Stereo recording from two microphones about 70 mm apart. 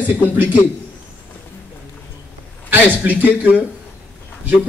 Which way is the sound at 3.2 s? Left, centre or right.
Right.